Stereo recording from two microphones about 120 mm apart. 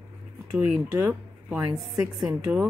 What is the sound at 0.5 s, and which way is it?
Speech, 10° right (ahead or behind).